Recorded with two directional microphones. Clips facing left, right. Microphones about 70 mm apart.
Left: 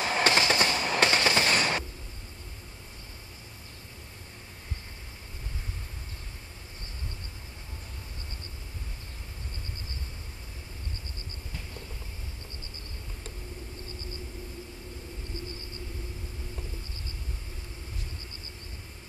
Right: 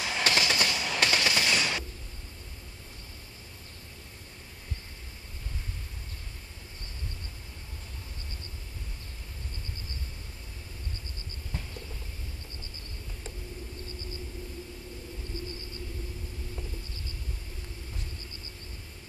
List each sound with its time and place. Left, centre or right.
0.0 s train: left